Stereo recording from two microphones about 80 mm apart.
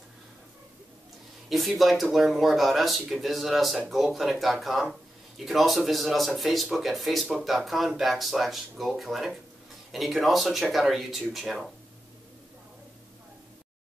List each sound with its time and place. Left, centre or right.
1.5 s speech: centre